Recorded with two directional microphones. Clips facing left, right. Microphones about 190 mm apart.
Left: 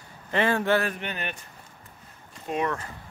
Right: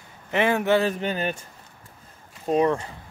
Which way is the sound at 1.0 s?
35° right (ahead or behind).